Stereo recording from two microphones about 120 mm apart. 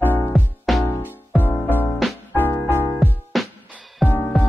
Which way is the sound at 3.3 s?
Centre (ahead or behind).